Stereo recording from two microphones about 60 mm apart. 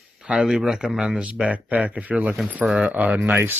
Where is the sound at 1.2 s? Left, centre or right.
Right.